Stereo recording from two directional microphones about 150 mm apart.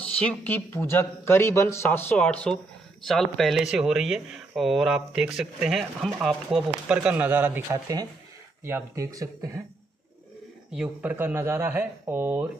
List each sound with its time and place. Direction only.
0.0 s a man's voice: 10° left (ahead or behind); by 9.6 s 25° right (ahead or behind)
10.7 s speech: 10° right (ahead or behind)